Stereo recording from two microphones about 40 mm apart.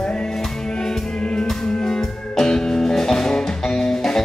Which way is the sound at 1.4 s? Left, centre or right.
Centre.